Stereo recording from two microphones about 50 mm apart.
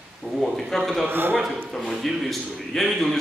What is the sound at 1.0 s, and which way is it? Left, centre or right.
Speech, right.